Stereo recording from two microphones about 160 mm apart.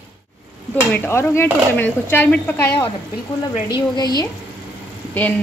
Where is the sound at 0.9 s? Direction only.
15° left (ahead or behind).